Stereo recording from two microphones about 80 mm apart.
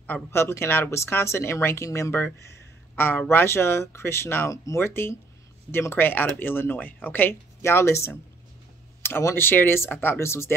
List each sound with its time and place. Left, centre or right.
0.0 s speech: left